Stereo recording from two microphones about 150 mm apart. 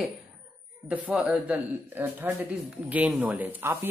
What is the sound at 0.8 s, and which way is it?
A woman's voice, 5° right (ahead or behind).